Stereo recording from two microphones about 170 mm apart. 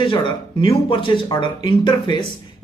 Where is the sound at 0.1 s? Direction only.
30° left (ahead or behind).